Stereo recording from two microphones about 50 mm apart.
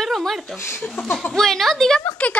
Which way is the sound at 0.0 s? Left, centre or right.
Centre.